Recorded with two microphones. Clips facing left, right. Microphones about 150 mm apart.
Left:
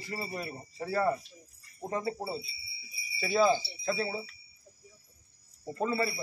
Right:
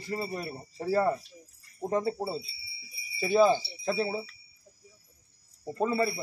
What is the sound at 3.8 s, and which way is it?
Speech, 25° right (ahead or behind).